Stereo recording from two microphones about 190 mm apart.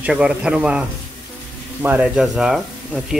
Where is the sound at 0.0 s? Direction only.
5° right (ahead or behind).